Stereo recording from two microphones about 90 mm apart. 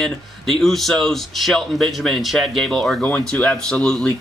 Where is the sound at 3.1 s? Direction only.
15° left (ahead or behind).